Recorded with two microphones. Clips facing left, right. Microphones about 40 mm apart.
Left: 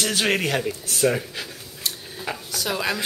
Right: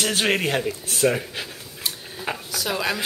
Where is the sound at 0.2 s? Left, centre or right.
Centre.